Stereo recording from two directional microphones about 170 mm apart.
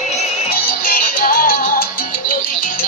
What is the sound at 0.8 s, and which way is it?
Salsa music, 55° left (ahead or behind).